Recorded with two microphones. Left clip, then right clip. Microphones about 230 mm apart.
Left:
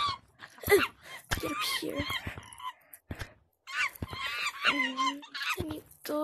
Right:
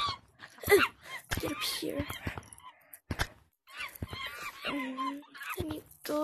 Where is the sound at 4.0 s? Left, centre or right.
Centre.